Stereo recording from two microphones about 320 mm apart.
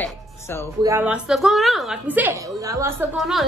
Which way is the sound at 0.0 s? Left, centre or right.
Centre.